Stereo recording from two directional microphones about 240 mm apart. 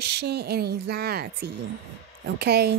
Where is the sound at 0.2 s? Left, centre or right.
Right.